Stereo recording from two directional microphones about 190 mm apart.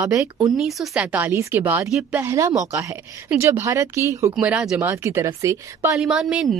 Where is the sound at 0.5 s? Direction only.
Centre (ahead or behind); by 5.9 s 15° right (ahead or behind).